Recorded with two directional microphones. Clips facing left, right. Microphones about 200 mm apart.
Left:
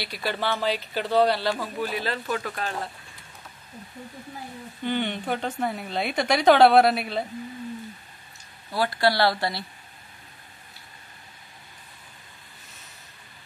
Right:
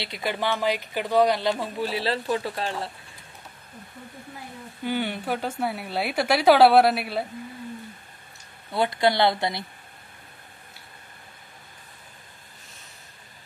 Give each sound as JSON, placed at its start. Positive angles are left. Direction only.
{"t": 0.0, "sound": "speech", "side_deg": -20}
{"t": 4.8, "sound": "a woman's voice", "side_deg": -5}
{"t": 8.7, "sound": "speech", "side_deg": -20}